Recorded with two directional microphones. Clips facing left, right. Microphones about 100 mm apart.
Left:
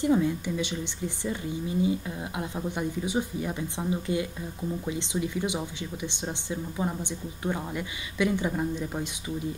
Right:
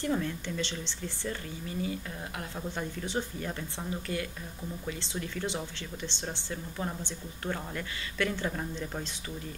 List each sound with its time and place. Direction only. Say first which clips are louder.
0.0 s speech: left 7 dB; 15° left (ahead or behind)